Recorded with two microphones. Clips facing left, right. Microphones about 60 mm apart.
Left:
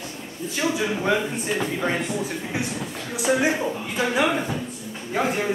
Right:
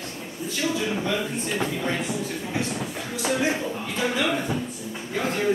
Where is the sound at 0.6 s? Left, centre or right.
Left.